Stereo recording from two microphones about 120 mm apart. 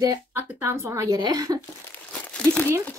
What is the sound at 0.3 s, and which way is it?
Speech, 20° right (ahead or behind).